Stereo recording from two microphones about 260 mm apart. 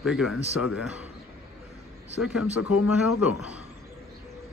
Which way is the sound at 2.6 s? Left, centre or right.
Left.